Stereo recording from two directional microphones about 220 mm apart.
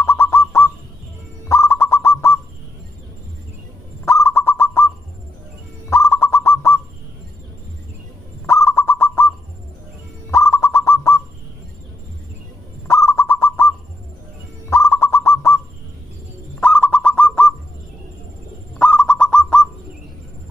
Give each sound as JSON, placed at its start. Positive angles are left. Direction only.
{"t": 0.0, "sound": "bird", "side_deg": 10}
{"t": 4.0, "sound": "bird", "side_deg": 10}
{"t": 8.5, "sound": "bird", "side_deg": 10}
{"t": 10.3, "sound": "bird", "side_deg": 10}
{"t": 12.8, "sound": "bird", "side_deg": 10}
{"t": 16.5, "sound": "bird", "side_deg": 5}
{"t": 18.8, "sound": "bird", "side_deg": 5}